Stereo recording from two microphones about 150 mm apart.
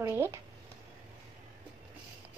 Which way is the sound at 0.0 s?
15° right (ahead or behind).